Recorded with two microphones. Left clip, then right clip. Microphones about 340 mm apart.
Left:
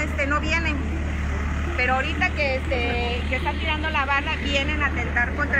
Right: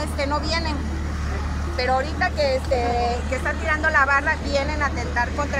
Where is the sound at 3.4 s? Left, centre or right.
Right.